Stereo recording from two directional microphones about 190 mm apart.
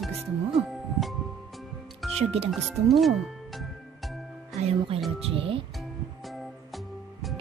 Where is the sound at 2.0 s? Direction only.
Centre (ahead or behind).